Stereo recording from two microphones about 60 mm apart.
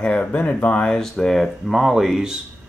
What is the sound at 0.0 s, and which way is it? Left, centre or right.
Speech, left.